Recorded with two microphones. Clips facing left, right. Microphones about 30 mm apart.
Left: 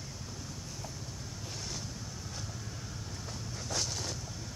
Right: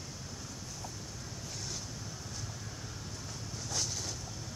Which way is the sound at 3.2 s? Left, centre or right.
Centre.